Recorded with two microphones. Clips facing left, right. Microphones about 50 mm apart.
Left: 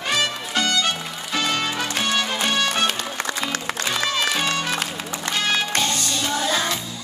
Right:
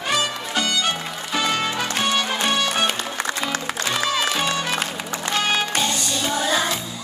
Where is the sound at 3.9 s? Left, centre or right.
Centre.